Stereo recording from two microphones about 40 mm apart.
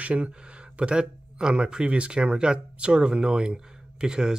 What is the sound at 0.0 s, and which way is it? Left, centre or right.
Speech, right.